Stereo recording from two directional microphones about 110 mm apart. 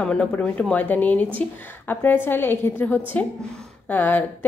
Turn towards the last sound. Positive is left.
turn(degrees=15)  # may be behind; listen again after turning